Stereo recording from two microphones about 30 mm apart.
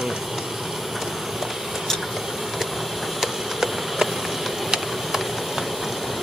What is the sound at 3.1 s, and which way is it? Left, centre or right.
Insect, centre.